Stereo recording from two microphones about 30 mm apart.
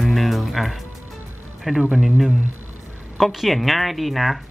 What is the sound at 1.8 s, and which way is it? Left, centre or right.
Speech, right.